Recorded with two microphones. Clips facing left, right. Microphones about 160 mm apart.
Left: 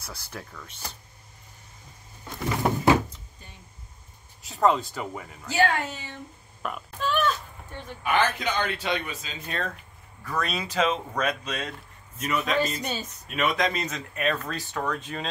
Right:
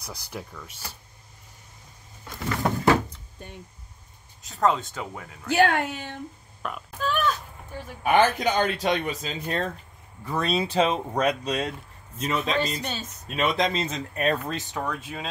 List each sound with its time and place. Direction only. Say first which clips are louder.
0.0 s speech: right 3 dB; 15° right (ahead or behind)
2.2 s a sound: left 1 dB; 15° left (ahead or behind)
3.3 s a sound: right 9 dB; 60° right (ahead or behind)
4.5 s speech: left 1 dB; centre (ahead or behind)
5.5 s speech: right 3 dB; 55° right (ahead or behind)
6.6 s burping: even; centre (ahead or behind)
8.0 s speech: right 5 dB; 45° right (ahead or behind)
14.4 s speech: right 1 dB; 20° right (ahead or behind)